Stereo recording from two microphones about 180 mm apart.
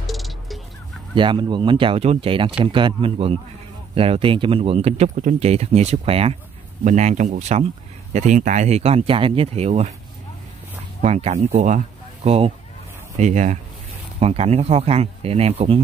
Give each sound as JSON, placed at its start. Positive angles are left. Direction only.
{"t": 0.0, "sound": "music", "side_deg": 0}
{"t": 1.1, "sound": "speech", "side_deg": -25}
{"t": 11.0, "sound": "speech", "side_deg": -40}